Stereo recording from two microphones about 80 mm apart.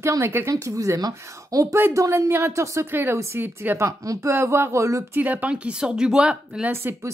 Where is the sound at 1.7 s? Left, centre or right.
Right.